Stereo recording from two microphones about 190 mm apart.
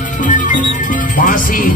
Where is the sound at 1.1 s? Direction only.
45° left (ahead or behind).